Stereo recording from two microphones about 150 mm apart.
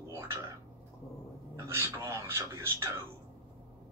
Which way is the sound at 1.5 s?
20° right (ahead or behind).